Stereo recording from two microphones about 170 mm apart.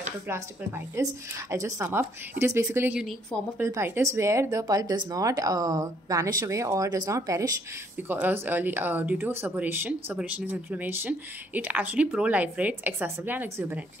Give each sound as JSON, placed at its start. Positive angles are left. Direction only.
{"t": 0.3, "sound": "speech", "side_deg": -15}
{"t": 3.0, "sound": "a woman's voice", "side_deg": 0}
{"t": 3.5, "sound": "speech", "side_deg": -15}